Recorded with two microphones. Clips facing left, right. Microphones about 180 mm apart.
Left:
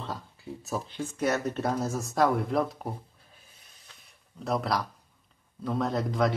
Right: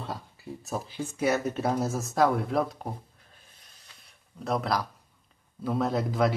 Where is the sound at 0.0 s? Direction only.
Centre (ahead or behind).